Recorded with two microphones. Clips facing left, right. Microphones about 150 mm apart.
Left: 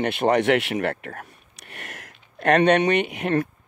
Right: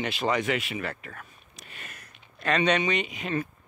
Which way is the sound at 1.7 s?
85° left.